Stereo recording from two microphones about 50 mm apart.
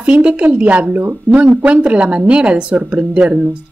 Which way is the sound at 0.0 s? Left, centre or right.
Right.